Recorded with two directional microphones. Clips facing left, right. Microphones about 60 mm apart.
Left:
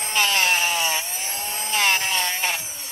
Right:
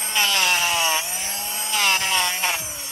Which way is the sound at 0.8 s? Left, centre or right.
Right.